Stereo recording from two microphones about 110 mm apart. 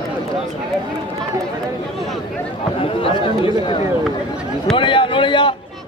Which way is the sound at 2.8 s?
55° left (ahead or behind).